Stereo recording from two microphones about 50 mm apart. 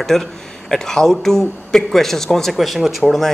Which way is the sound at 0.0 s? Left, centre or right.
Centre.